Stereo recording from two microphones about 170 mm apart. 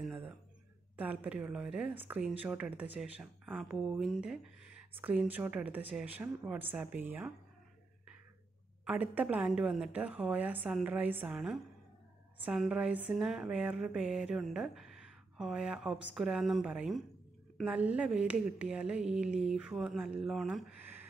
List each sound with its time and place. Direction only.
0.0 s a sound: 5° right (ahead or behind)
0.9 s speech: 10° right (ahead or behind)
8.8 s speech: 10° right (ahead or behind)